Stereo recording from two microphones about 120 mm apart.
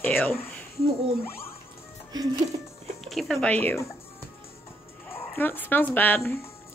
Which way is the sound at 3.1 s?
5° left (ahead or behind).